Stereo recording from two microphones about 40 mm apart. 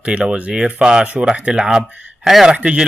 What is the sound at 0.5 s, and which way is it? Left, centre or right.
Speech, centre.